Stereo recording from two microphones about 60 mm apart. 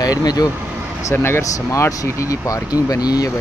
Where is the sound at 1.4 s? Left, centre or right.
Left.